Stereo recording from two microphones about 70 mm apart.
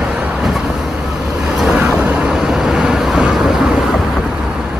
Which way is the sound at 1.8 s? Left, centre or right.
Right.